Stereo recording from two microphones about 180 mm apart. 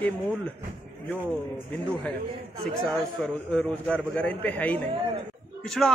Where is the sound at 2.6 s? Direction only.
Centre (ahead or behind).